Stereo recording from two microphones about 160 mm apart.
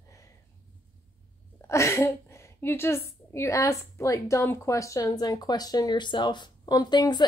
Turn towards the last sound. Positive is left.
turn(degrees=25)  # may be behind; listen again after turning